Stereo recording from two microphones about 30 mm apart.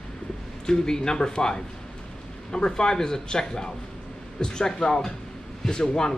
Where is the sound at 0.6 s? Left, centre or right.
Left.